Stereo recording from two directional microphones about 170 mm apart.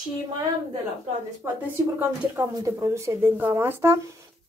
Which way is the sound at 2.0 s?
20° right (ahead or behind).